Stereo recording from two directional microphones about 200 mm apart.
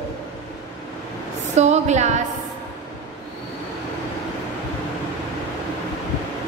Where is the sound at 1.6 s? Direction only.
35° right (ahead or behind).